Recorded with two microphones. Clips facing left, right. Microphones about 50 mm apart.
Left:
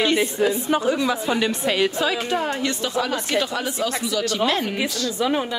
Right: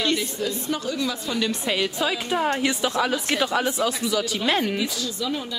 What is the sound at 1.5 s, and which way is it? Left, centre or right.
A woman's voice, centre.